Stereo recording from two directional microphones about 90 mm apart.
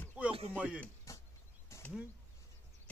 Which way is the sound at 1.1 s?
35° left (ahead or behind).